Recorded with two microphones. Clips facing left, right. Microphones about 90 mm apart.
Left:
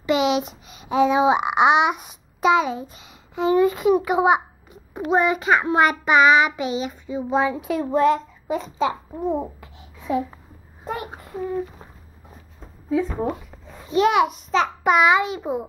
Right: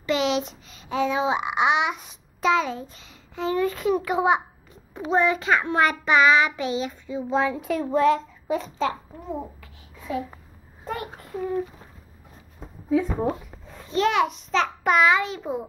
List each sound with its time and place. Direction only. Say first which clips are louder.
0.0 s speech: left 3 dB; 10° left (ahead or behind)
4.9 s child singing: left 2 dB; 10° left (ahead or behind)
9.2 s babbling: left 9 dB; 25° left (ahead or behind)
10.9 s child singing: left 2 dB; 15° left (ahead or behind)
13.0 s a child's voice: left 1 dB; centre (ahead or behind)